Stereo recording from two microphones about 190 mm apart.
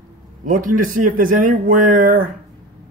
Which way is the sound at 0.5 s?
45° right (ahead or behind).